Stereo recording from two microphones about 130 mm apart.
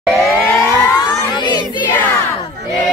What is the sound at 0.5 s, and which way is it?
Vehicle, 20° left (ahead or behind).